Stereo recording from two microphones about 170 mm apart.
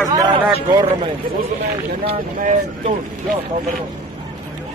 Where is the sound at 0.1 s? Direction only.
25° right (ahead or behind).